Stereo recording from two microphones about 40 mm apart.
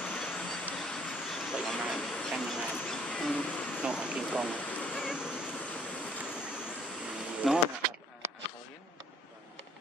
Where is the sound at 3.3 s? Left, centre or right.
Left.